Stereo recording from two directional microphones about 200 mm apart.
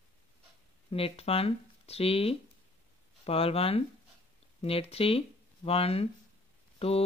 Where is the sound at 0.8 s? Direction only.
30° left (ahead or behind).